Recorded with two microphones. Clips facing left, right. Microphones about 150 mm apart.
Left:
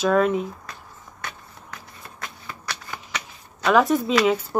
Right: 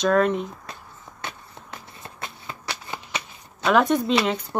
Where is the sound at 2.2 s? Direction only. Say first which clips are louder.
Right 1 dB; 25° right (ahead or behind).